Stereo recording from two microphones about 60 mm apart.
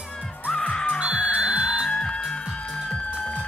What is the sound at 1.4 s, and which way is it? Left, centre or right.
Music, centre.